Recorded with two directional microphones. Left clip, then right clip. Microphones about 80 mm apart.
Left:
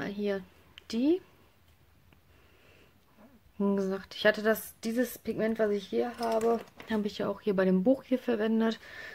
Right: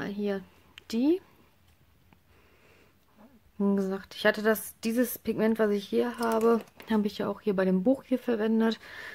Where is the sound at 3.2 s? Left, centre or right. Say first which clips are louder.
Right 1 dB; right.